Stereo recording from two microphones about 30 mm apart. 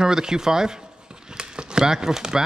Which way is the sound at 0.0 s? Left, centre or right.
Right.